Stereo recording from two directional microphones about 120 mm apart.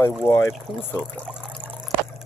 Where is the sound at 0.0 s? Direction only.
25° left (ahead or behind).